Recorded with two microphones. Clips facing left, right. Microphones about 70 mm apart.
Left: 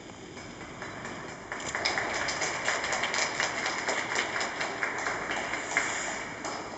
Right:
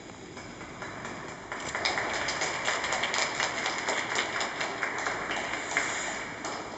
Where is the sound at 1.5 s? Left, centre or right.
Centre.